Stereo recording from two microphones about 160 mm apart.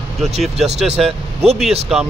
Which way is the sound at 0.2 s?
Centre (ahead or behind).